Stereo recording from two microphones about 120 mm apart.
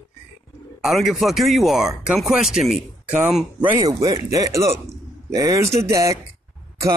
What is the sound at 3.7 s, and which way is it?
Speech, 30° right (ahead or behind).